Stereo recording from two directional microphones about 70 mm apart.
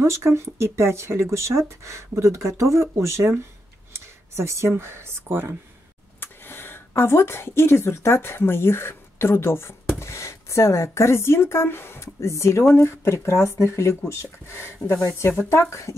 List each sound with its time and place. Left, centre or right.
0.0 s speech: right
6.1 s a sound: left
6.9 s speech: left